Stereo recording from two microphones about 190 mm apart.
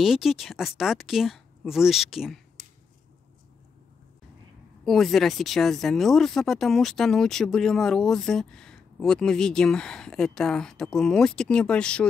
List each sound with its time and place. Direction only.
0.0 s speech: centre (ahead or behind)
4.8 s speech: centre (ahead or behind)